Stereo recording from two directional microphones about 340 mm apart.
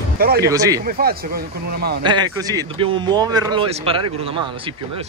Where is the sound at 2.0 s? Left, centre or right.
Centre.